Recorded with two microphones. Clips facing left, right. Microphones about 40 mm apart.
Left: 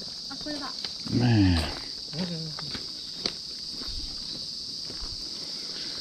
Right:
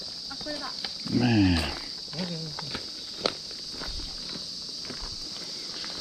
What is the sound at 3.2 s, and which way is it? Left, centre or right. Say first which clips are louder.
Walk: right 6 dB; right.